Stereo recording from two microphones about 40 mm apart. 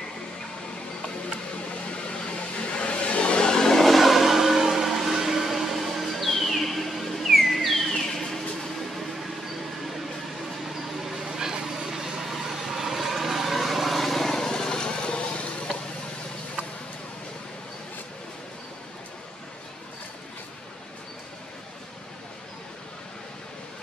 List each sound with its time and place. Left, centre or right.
2.0 s vehicle: left
3.8 s vehicle: centre
10.7 s vehicle: centre; by 15.4 s left